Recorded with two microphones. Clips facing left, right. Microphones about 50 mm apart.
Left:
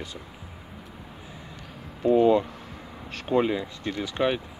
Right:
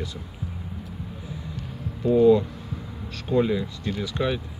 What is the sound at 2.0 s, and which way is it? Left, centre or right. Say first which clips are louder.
Speech: right 2 dB; left.